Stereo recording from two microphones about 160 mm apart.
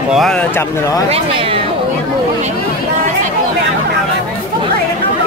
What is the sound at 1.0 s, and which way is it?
Speech, 40° right (ahead or behind).